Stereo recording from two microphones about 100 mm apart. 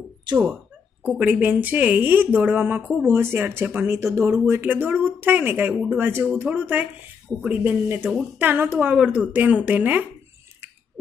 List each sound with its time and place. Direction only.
1.0 s speech: 15° right (ahead or behind)
8.9 s speech: 10° right (ahead or behind)